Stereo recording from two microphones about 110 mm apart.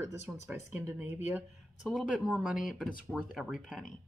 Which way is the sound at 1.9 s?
5° right (ahead or behind).